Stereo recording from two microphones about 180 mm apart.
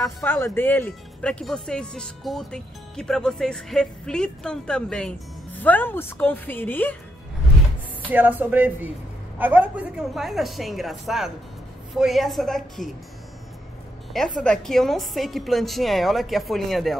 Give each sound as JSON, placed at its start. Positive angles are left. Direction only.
{"t": 0.0, "sound": "speech", "side_deg": 10}
{"t": 8.1, "sound": "speech", "side_deg": -10}
{"t": 14.4, "sound": "speech", "side_deg": 5}